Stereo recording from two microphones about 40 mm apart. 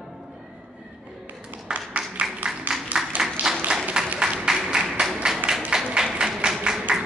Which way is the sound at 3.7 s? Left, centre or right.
Right.